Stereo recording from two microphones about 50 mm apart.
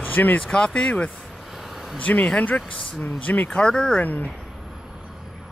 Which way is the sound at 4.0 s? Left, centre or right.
Left.